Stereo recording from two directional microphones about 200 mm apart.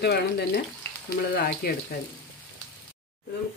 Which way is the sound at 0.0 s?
55° left (ahead or behind).